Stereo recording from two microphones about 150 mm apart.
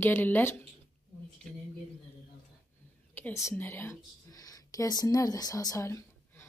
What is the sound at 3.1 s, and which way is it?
A woman's voice, 15° left (ahead or behind).